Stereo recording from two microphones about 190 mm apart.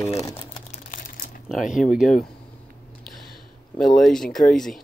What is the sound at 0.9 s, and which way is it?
Crumpling, 45° left (ahead or behind).